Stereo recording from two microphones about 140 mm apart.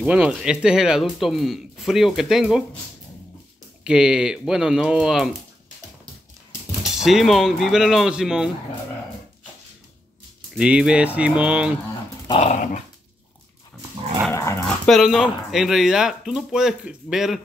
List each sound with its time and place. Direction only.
0.0 s speech: 10° right (ahead or behind)
3.8 s speech: 5° right (ahead or behind)
6.8 s speech: 5° right (ahead or behind)
10.6 s speech: 5° right (ahead or behind)
12.4 s dog: 55° left (ahead or behind)
14.3 s dog: 20° left (ahead or behind)
14.9 s speech: centre (ahead or behind)